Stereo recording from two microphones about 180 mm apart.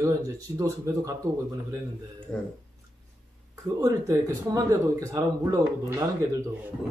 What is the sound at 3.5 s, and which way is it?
Speech, 20° right (ahead or behind).